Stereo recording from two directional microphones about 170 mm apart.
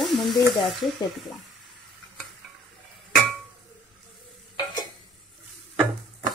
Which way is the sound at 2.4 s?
Centre (ahead or behind).